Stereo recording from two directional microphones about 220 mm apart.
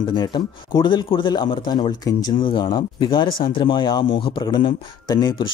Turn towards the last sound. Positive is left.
turn(degrees=20)  # may be behind; listen again after turning